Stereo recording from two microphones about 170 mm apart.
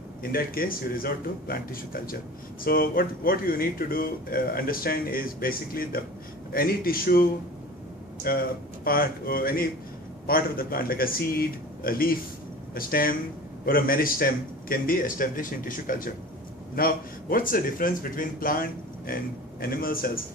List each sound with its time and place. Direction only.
0.2 s speech: 60° left (ahead or behind)